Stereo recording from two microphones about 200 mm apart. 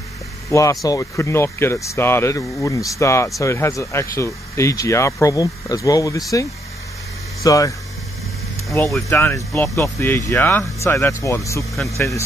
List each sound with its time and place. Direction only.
0.5 s speech: 15° left (ahead or behind)
7.4 s speech: 15° left (ahead or behind)
8.8 s speech: 10° left (ahead or behind)